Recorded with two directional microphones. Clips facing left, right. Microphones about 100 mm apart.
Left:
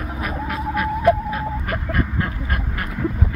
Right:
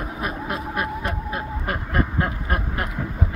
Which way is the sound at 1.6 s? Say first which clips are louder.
Even; 25° right (ahead or behind).